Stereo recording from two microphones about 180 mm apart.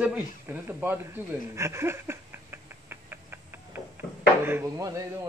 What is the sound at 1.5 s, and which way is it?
Rodents, 15° right (ahead or behind).